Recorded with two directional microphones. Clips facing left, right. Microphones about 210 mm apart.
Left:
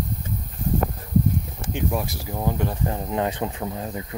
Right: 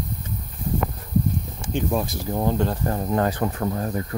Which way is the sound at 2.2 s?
10° left (ahead or behind).